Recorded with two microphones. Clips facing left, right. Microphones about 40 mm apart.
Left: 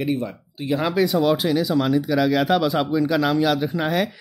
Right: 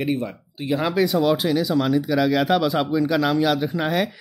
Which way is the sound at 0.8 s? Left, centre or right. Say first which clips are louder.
Even; centre.